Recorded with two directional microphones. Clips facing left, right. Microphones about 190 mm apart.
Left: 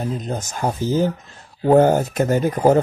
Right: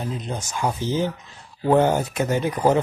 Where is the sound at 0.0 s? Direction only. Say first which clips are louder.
Left 4 dB; 45° left (ahead or behind).